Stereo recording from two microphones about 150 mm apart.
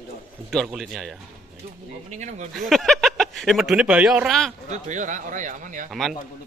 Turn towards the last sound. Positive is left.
turn(degrees=0)  # may be behind; listen again after turning